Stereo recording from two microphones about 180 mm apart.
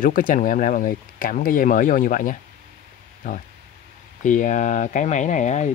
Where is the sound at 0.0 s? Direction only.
50° left (ahead or behind).